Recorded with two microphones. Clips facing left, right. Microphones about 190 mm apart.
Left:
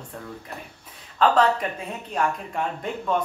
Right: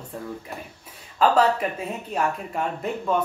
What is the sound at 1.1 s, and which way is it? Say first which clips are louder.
Speech: even; 10° right (ahead or behind).